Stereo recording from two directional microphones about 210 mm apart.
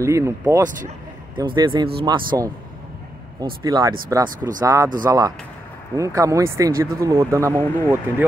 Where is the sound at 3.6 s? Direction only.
15° right (ahead or behind).